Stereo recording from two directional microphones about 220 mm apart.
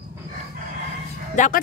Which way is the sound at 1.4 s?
35° left (ahead or behind).